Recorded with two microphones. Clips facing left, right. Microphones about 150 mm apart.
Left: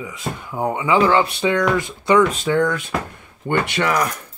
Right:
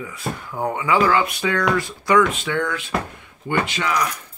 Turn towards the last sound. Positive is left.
turn(degrees=55)  # may be behind; listen again after turning